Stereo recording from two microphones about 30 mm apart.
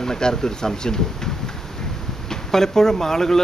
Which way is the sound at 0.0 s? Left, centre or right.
Centre.